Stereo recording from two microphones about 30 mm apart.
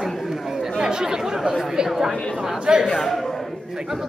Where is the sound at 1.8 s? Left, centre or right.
Right.